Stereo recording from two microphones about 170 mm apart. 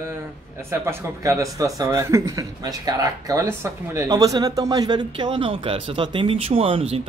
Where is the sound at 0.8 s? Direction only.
20° right (ahead or behind).